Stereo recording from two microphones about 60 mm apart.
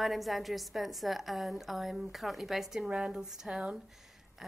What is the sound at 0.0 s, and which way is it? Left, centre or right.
A woman's voice, centre.